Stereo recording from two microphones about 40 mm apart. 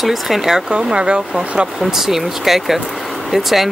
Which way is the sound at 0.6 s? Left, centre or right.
Right.